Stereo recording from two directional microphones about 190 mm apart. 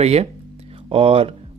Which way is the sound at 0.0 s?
35° right (ahead or behind).